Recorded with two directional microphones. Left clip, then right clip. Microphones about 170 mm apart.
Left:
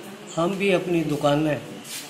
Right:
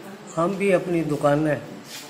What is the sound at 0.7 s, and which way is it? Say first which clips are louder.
Speech: right 1 dB; 10° right (ahead or behind).